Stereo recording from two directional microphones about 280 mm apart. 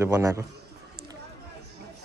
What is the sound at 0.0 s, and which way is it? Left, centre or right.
Speech, centre.